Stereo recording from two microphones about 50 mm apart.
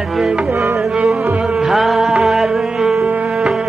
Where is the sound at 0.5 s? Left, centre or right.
Right.